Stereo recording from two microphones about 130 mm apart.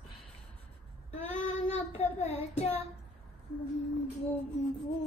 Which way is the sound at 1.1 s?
70° left (ahead or behind).